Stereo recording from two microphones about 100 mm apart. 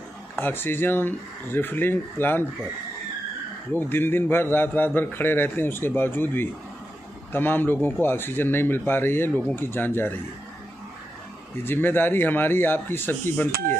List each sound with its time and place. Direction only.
0.4 s a man's voice: 20° left (ahead or behind)
3.7 s a man's voice: 20° left (ahead or behind)
11.6 s a man's voice: 20° left (ahead or behind)